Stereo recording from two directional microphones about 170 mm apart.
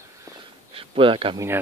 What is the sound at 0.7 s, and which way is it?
Speech, 30° right (ahead or behind).